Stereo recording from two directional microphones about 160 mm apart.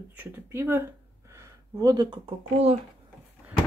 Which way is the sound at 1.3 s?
20° right (ahead or behind).